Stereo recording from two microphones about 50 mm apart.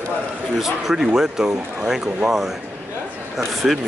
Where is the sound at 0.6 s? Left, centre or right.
Centre.